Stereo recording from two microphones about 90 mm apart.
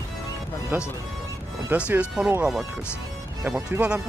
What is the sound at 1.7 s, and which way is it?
Speech, 15° right (ahead or behind).